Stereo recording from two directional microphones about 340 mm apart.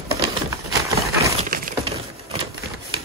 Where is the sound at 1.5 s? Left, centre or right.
Right.